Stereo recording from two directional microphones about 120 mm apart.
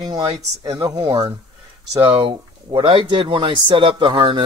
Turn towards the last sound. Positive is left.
turn(degrees=-45)  # may be behind; listen again after turning